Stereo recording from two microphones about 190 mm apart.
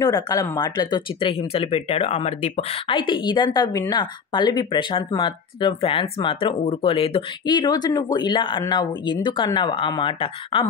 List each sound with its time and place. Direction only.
0.0 s speech: 20° left (ahead or behind)